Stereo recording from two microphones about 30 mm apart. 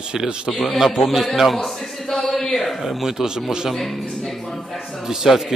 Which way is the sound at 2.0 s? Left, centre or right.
Centre.